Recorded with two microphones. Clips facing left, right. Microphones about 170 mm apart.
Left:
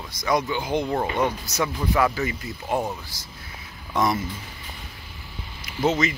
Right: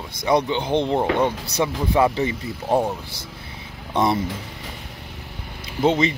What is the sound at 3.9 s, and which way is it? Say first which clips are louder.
Speech: right 3 dB; 25° right (ahead or behind).